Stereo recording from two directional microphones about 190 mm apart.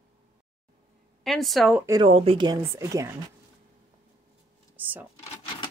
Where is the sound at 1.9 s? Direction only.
20° right (ahead or behind).